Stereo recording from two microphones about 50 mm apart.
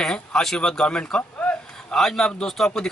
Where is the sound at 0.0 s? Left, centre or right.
Centre.